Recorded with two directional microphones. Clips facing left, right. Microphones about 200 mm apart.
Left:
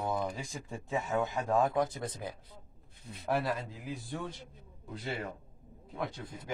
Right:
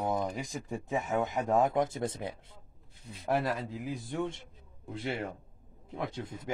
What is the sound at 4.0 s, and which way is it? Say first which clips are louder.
Speech: right 7 dB; 20° right (ahead or behind).